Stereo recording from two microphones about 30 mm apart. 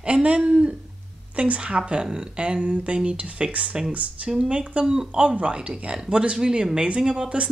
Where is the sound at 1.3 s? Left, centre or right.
Right.